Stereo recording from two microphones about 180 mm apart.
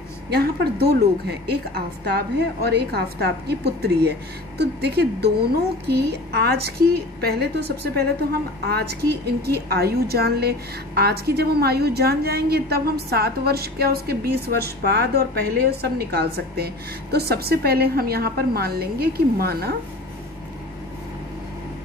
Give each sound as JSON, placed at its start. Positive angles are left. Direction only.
{"t": 0.3, "sound": "a woman's voice", "side_deg": -60}
{"t": 2.0, "sound": "a woman's voice", "side_deg": -65}